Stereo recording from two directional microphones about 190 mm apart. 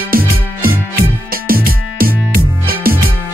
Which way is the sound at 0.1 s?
50° right (ahead or behind).